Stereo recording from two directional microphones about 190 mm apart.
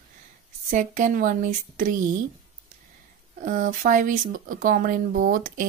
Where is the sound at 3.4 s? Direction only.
45° right (ahead or behind).